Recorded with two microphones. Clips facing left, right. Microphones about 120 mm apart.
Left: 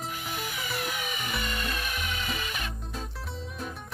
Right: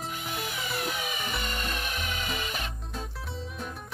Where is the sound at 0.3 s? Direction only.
Centre (ahead or behind).